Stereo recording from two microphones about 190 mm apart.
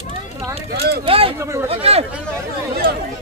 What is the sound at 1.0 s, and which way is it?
Speech, 30° right (ahead or behind).